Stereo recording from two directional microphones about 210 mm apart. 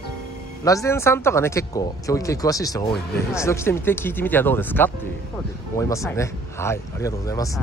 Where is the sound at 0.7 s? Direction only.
15° left (ahead or behind).